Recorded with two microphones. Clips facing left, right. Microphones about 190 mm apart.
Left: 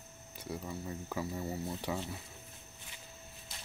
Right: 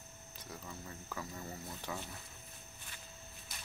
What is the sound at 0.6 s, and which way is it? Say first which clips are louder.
Speech: left 7 dB; 20° left (ahead or behind).